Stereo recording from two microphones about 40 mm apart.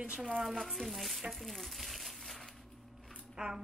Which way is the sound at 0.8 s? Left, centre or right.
Centre.